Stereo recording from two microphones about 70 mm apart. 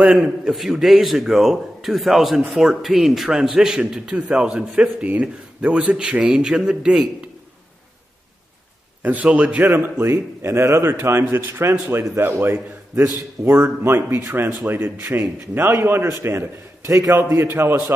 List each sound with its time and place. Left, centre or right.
0.0 s a man's voice: centre
9.0 s a man's voice: centre
9.8 s a man's voice: right